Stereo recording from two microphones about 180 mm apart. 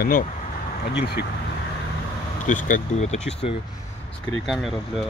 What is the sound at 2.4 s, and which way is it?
Speech, 45° left (ahead or behind).